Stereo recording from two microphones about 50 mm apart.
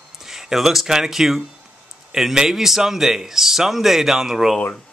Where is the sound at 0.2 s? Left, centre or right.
Centre.